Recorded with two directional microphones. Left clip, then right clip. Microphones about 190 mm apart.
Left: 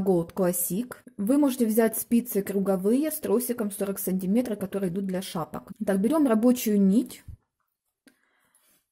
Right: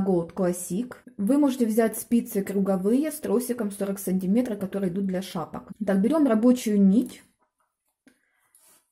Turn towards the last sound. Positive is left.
turn(degrees=45)  # may be behind; listen again after turning